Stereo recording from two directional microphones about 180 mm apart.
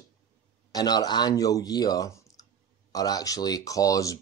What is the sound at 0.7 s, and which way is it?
Speech, 20° left (ahead or behind).